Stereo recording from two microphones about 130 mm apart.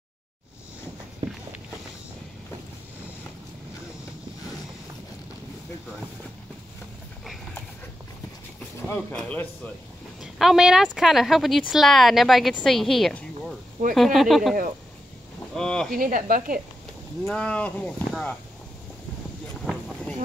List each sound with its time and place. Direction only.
1.2 s walk: 35° right (ahead or behind)
8.8 s speech: 10° left (ahead or behind)
10.2 s speech: 5° right (ahead or behind)
15.9 s speech: 90° right
17.3 s speech: 10° left (ahead or behind)
19.6 s a sound: 5° left (ahead or behind)